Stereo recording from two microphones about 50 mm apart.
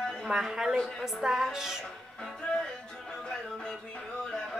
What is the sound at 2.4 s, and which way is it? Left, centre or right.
Music, centre.